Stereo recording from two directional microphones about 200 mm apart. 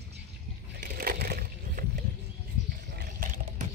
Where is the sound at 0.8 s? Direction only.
45° right (ahead or behind).